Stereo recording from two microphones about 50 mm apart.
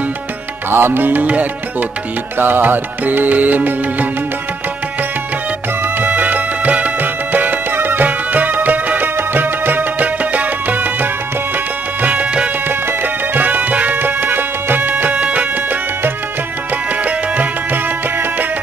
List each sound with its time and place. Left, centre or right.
0.7 s music: right
2.3 s music: right
5.9 s music: right
12.6 s music: right